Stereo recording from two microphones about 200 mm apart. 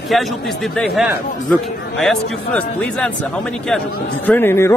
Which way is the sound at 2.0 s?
5° left (ahead or behind).